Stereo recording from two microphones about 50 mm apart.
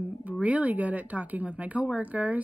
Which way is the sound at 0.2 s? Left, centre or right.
Right.